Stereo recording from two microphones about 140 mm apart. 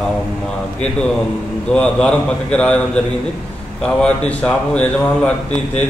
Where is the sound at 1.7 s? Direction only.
5° left (ahead or behind).